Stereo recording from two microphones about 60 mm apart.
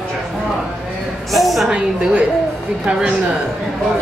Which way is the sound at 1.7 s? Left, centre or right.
Centre.